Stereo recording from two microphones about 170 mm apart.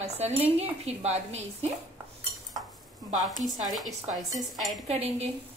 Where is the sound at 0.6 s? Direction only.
40° right (ahead or behind).